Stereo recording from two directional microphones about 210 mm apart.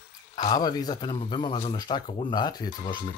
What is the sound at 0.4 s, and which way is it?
Speech, 20° left (ahead or behind).